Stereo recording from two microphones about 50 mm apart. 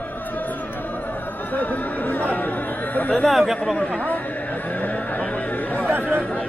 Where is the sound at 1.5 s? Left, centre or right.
Left.